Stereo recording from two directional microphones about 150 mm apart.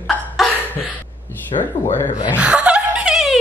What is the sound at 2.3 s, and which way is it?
Laughter, 10° right (ahead or behind).